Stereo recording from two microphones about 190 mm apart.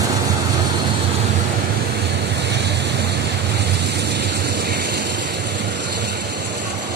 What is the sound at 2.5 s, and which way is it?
Waves, 65° right (ahead or behind).